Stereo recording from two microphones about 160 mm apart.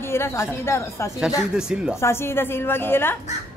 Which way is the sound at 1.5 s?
5° right (ahead or behind).